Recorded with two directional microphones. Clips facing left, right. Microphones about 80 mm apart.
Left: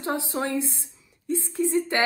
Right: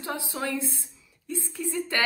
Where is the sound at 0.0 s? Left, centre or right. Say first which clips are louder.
Left 4 dB; left.